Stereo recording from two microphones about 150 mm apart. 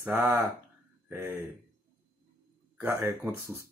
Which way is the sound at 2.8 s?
15° right (ahead or behind).